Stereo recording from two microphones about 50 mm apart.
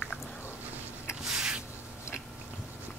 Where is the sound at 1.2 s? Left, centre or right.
Centre.